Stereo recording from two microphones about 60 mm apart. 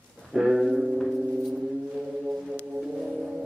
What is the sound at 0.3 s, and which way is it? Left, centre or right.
Music, centre.